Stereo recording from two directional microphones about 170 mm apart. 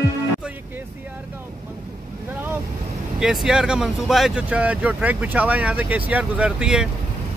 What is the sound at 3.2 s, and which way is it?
Speech, 5° right (ahead or behind).